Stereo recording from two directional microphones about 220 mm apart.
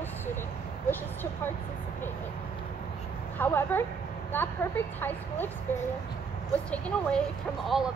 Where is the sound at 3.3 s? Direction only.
10° left (ahead or behind).